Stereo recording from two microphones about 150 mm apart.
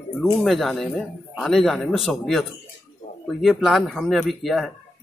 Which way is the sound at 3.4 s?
Centre (ahead or behind).